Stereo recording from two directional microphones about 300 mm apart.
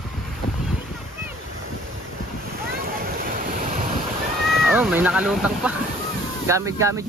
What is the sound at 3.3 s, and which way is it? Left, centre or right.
Waves, right.